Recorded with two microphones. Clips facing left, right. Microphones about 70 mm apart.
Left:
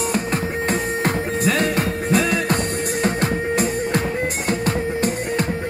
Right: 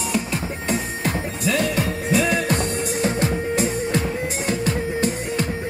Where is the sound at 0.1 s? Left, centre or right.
Left.